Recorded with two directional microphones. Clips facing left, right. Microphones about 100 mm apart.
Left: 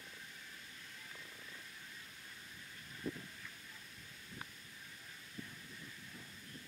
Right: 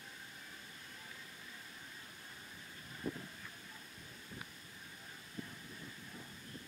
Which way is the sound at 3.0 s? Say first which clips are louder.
Right 1 dB; 30° right (ahead or behind).